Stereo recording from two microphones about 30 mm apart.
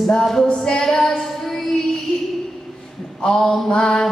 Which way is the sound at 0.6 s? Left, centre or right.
Centre.